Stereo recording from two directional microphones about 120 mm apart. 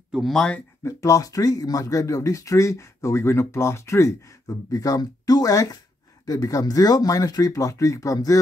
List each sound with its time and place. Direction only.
0.1 s speech: centre (ahead or behind)
0.8 s speech: 25° left (ahead or behind)